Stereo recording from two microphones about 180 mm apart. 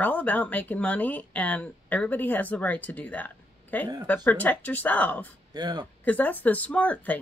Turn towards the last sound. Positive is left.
turn(degrees=10)  # may be behind; listen again after turning